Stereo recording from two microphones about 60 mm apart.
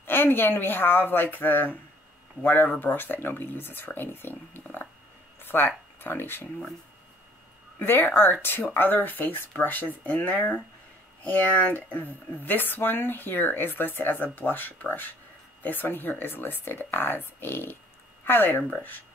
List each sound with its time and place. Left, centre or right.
0.0 s speech: left
5.4 s a sound: left
5.9 s speech: left
7.8 s speech: left